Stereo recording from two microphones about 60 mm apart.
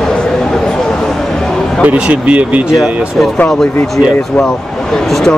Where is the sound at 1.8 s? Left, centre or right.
Right.